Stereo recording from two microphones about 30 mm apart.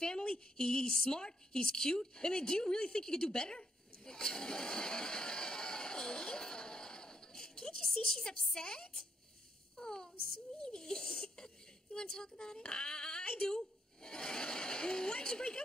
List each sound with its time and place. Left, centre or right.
0.0 s a woman's voice: left
9.8 s a sound: left
10.6 s speech: left
13.2 s a woman's voice: left
13.5 s speech: left